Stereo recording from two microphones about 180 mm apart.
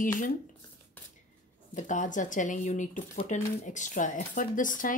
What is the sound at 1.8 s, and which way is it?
Speech, 45° left (ahead or behind).